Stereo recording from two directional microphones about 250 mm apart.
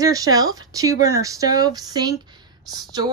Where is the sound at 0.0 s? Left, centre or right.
Centre.